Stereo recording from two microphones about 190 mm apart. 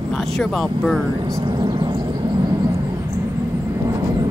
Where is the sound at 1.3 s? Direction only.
20° right (ahead or behind).